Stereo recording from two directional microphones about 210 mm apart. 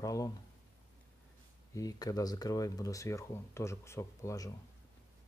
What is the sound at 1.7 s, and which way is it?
Speech, 15° left (ahead or behind).